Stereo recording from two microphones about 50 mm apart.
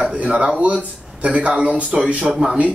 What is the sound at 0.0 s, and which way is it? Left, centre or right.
A man's voice, right.